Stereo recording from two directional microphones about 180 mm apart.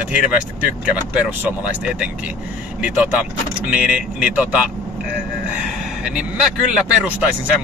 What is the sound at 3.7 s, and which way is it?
Speech, 5° right (ahead or behind).